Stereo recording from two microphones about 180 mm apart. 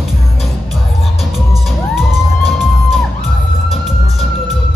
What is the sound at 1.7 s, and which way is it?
Music, centre (ahead or behind).